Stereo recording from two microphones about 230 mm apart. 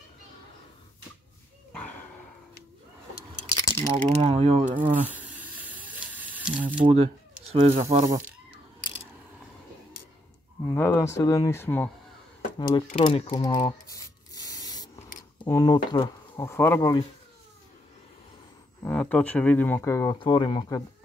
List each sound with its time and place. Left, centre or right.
1.7 s dog: centre
3.8 s speech: right
5.1 s a sound: centre
6.8 s speech: right
10.7 s speech: centre
12.5 s a sound: centre
15.4 s speech: centre
18.9 s speech: centre